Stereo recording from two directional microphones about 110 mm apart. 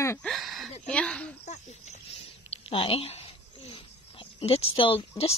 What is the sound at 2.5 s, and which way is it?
Speech, 55° left (ahead or behind).